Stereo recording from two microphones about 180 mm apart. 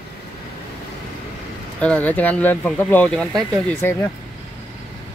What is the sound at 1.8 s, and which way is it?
Speech, 10° left (ahead or behind).